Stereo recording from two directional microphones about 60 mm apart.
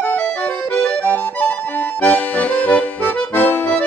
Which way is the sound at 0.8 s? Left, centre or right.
Centre.